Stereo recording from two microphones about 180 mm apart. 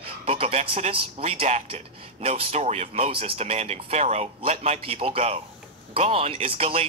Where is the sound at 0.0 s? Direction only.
30° right (ahead or behind).